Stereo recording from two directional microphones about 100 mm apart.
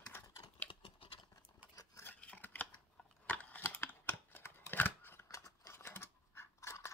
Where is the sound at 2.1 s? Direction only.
15° left (ahead or behind).